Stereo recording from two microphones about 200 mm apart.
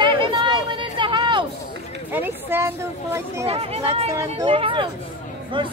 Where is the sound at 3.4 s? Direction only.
30° right (ahead or behind).